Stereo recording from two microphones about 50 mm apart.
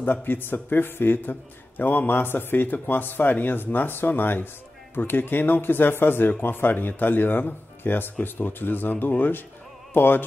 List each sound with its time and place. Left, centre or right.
0.0 s a man's voice: left